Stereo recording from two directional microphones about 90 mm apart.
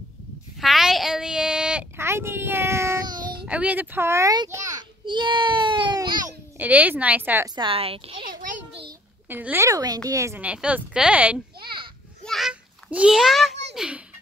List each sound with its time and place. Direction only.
0.6 s a sound: 5° right (ahead or behind)
2.0 s a child's voice: 30° right (ahead or behind)
3.4 s speech: 15° right (ahead or behind)
4.5 s a sound: 40° right (ahead or behind)
5.0 s a child's voice: 65° right (ahead or behind)
6.6 s speech: 20° right (ahead or behind)
7.4 s a woman's voice: 55° right (ahead or behind)
7.7 s a woman's voice: 90° right
9.3 s speech: 20° right (ahead or behind)
9.7 s a woman's voice: 45° right (ahead or behind)
10.4 s speech: 15° right (ahead or behind)
12.3 s children playing: centre (ahead or behind)
12.9 s a child's voice: 10° right (ahead or behind)